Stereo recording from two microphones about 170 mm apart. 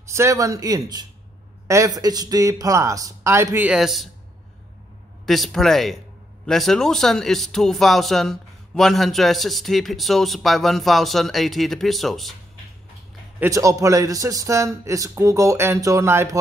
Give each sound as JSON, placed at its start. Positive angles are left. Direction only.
{"t": 0.0, "sound": "speech", "side_deg": -15}
{"t": 5.2, "sound": "a man's voice", "side_deg": 0}
{"t": 13.4, "sound": "speech", "side_deg": -20}